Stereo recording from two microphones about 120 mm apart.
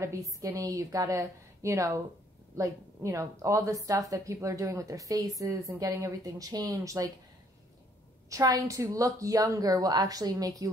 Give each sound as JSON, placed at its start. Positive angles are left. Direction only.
{"t": 0.0, "sound": "a woman's voice", "side_deg": -25}
{"t": 8.3, "sound": "a woman's voice", "side_deg": -30}